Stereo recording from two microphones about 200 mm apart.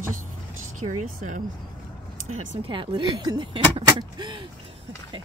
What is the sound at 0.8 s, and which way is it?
Speech, 40° right (ahead or behind).